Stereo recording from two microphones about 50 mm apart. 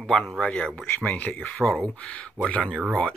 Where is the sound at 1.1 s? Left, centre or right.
Left.